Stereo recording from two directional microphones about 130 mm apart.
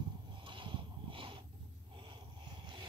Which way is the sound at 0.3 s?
40° right (ahead or behind).